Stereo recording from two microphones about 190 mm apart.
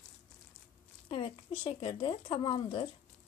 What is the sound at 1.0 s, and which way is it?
Speech, 30° left (ahead or behind).